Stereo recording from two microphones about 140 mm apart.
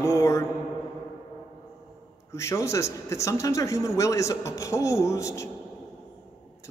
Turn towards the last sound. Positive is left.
turn(degrees=20)  # may be behind; listen again after turning